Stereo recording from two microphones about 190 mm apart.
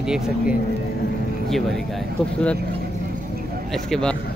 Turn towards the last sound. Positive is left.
turn(degrees=0)  # may be behind; listen again after turning